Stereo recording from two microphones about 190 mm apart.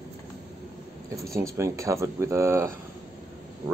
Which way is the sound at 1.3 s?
15° right (ahead or behind).